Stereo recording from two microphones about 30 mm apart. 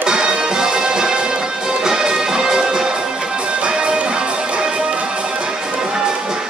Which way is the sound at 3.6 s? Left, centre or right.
Right.